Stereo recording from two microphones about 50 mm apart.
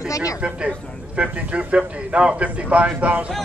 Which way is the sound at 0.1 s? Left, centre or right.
Left.